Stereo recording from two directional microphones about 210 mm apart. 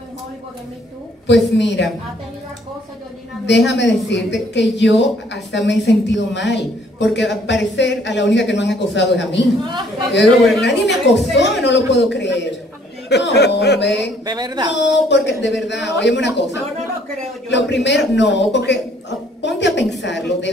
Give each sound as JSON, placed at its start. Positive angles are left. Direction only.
{"t": 1.2, "sound": "a woman's voice", "side_deg": 55}
{"t": 3.4, "sound": "a woman's voice", "side_deg": 55}
{"t": 10.6, "sound": "a woman's voice", "side_deg": 55}
{"t": 14.2, "sound": "speech", "side_deg": -20}
{"t": 14.7, "sound": "a woman's voice", "side_deg": 55}
{"t": 17.5, "sound": "a woman's voice", "side_deg": 55}